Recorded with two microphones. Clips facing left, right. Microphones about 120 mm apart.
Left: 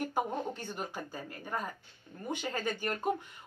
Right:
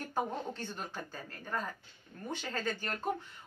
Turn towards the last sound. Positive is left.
turn(degrees=15)  # may be behind; listen again after turning